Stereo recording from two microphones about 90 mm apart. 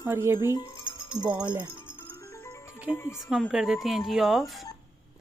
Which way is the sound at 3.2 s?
5° right (ahead or behind).